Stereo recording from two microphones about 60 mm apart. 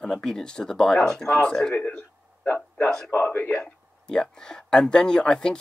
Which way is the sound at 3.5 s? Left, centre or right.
Centre.